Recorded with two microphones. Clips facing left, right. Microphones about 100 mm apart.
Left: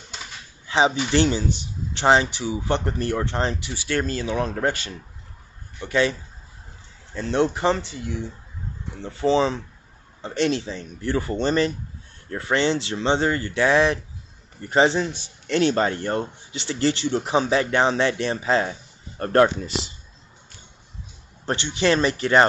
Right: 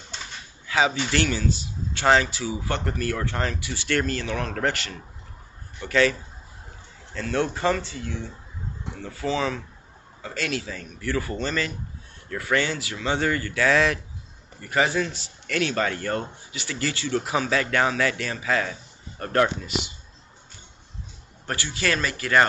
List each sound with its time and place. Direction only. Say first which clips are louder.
0.7 s a sound: left 3 dB; 25° left (ahead or behind)
0.9 s speech: left 4 dB; 20° left (ahead or behind)
7.2 s speech: left 4 dB; 20° left (ahead or behind)
9.0 s speech: left 6 dB; 25° left (ahead or behind)
21.5 s speech: left 6 dB; 25° left (ahead or behind)